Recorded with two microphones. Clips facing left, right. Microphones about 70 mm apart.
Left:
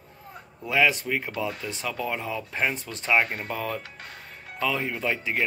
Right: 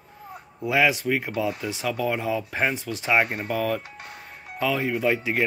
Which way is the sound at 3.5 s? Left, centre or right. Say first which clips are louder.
Right 5 dB; centre.